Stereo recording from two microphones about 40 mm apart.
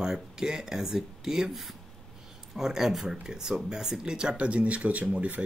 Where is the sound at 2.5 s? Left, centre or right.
Centre.